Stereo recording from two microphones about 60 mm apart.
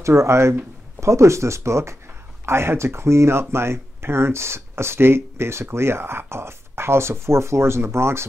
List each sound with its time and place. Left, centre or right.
0.0 s speech: right